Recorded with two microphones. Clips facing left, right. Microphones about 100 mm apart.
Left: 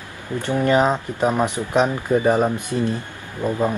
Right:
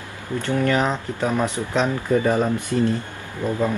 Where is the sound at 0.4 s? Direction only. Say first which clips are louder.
Left 3 dB; 20° left (ahead or behind).